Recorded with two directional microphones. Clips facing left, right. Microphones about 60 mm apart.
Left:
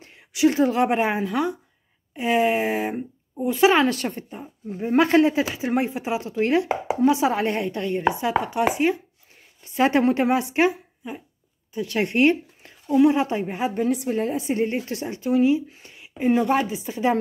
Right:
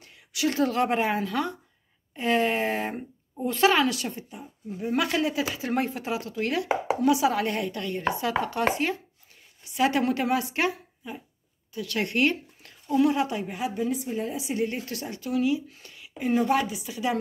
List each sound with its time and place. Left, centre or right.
0.0 s a woman's voice: left
3.9 s speech: left
4.7 s speech: left; by 9.0 s centre
9.7 s a woman's voice: left
13.7 s a woman's voice: left
14.4 s speech: left